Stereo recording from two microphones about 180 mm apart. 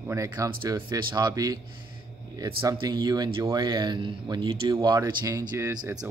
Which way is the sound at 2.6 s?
25° right (ahead or behind).